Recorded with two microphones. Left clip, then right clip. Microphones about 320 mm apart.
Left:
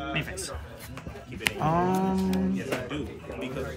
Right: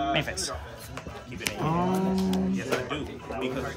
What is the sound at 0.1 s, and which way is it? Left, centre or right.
Speech, right.